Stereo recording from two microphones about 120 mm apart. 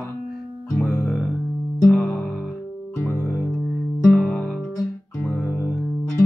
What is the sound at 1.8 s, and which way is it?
Music, 10° left (ahead or behind).